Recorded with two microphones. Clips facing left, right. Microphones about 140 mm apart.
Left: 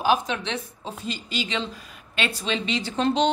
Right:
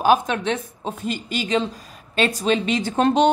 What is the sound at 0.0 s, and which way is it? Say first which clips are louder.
A woman's voice: right 5 dB; 50° right (ahead or behind).